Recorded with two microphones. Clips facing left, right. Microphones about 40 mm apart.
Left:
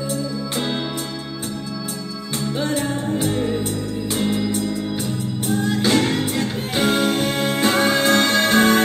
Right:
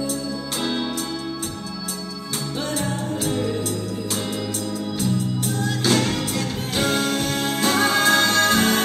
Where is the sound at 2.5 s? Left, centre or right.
Left.